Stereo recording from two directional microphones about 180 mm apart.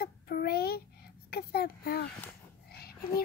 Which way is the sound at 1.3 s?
60° left (ahead or behind).